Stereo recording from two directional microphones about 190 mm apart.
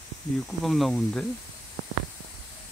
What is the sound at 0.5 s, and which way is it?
Speech, centre (ahead or behind).